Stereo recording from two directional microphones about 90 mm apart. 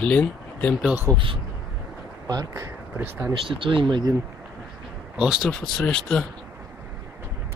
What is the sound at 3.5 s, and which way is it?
Speech, 70° right (ahead or behind).